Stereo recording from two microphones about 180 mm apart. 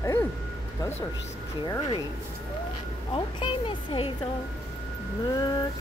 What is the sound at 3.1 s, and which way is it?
Speech, 25° left (ahead or behind).